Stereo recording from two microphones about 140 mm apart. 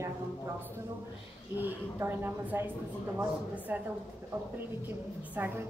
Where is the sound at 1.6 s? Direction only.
15° right (ahead or behind).